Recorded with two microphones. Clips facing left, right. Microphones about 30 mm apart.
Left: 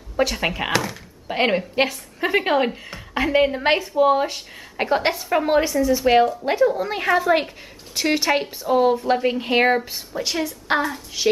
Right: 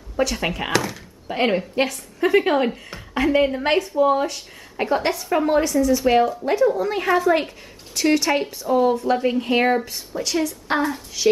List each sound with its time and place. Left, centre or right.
0.2 s a woman's voice: centre
3.3 s a woman's voice: centre